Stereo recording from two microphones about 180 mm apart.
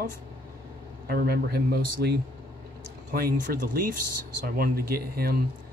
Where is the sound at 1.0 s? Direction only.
60° right (ahead or behind).